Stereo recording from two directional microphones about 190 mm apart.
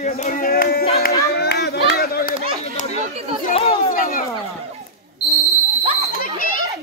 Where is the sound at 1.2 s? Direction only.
60° left (ahead or behind).